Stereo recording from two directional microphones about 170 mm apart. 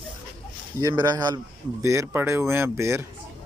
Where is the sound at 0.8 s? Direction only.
20° right (ahead or behind).